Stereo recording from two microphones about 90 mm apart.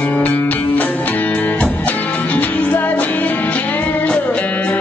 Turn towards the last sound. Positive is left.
turn(degrees=15)  # may be behind; listen again after turning